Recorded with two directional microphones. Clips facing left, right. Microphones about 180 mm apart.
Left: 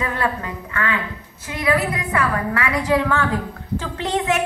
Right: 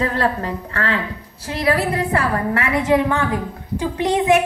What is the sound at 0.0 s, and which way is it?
A woman's voice, 35° right (ahead or behind).